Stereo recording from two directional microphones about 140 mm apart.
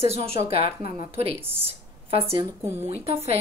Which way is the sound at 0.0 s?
45° right (ahead or behind).